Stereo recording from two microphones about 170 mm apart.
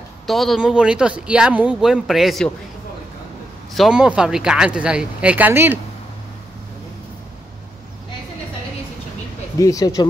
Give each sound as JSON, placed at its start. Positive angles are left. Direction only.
{"t": 0.3, "sound": "speech", "side_deg": 0}
{"t": 3.7, "sound": "speech", "side_deg": 0}
{"t": 9.6, "sound": "speech", "side_deg": 20}